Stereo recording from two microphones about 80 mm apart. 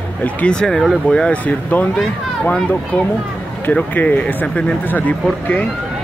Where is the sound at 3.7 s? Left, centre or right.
Centre.